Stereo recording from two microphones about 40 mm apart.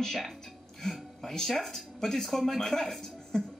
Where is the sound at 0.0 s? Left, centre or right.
Centre.